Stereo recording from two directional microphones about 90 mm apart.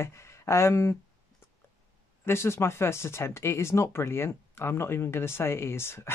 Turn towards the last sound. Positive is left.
turn(degrees=30)  # may be behind; listen again after turning